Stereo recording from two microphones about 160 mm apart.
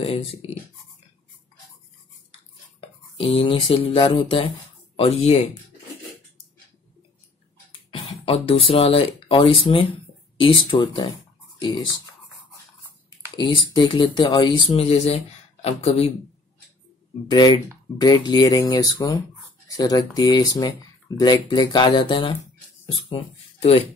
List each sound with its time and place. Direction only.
0.0 s speech: 40° left (ahead or behind)
2.8 s speech: 35° left (ahead or behind)
7.9 s speech: 35° left (ahead or behind)
13.4 s speech: 30° left (ahead or behind)
17.3 s speech: 25° left (ahead or behind)